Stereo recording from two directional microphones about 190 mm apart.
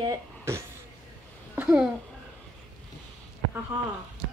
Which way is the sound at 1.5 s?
10° right (ahead or behind).